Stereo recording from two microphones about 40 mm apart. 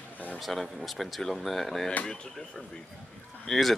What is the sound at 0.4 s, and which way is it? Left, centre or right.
Speech, centre.